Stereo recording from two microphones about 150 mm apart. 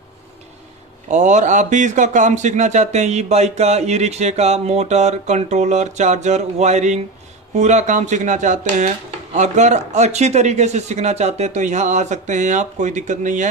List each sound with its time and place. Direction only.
1.1 s speech: 55° right (ahead or behind)